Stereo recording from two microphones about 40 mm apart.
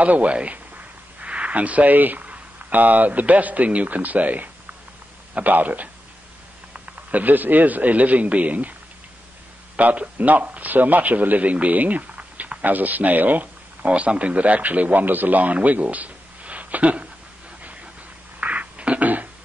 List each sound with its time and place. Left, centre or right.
0.0 s a man's voice: right
9.8 s a man's voice: right
13.8 s speech: right
18.4 s a sound: right